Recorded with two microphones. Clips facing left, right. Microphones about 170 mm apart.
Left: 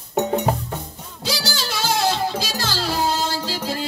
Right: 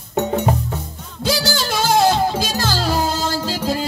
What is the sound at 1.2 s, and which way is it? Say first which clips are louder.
Music: right 6 dB; 55° right (ahead or behind).